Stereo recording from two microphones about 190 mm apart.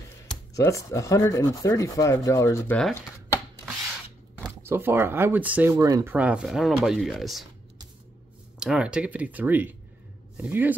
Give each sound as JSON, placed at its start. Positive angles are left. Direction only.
{"t": 0.6, "sound": "rub", "side_deg": 15}
{"t": 4.4, "sound": "speech", "side_deg": -15}
{"t": 6.1, "sound": "speech", "side_deg": -5}
{"t": 8.5, "sound": "speech", "side_deg": -5}